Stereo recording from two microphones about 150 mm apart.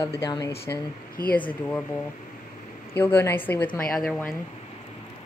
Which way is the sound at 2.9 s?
15° left (ahead or behind).